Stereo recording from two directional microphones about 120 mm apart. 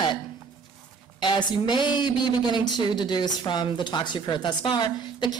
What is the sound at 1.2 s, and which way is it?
A man's voice, 40° left (ahead or behind).